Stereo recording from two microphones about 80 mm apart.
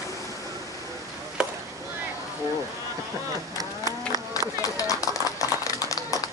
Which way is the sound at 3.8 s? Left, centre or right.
Left.